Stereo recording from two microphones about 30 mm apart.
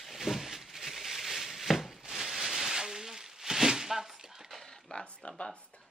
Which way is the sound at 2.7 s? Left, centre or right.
Centre.